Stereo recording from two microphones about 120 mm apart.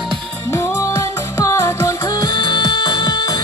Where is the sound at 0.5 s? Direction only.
25° left (ahead or behind).